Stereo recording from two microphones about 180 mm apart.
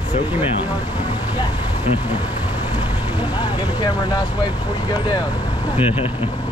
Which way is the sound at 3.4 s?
25° left (ahead or behind).